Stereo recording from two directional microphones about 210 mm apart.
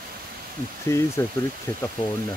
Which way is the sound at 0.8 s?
15° left (ahead or behind).